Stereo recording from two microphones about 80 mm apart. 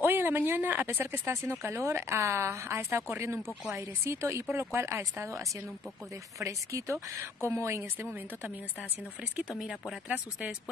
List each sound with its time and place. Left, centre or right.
0.0 s speech: right
6.4 s speech: right
9.6 s speech: centre
10.0 s speech: centre